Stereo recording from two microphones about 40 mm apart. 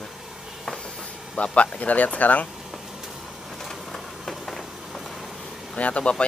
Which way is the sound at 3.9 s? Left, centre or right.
Centre.